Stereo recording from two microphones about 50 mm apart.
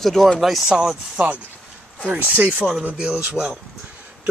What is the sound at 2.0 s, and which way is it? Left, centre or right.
Speech, right.